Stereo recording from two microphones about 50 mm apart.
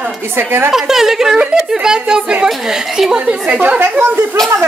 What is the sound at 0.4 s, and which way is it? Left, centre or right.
Speech, right.